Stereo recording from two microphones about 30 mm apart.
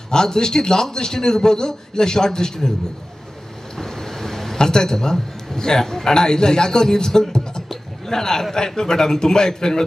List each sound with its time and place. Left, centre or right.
0.1 s a man's voice: left
3.7 s vehicle: centre
4.6 s a man's voice: left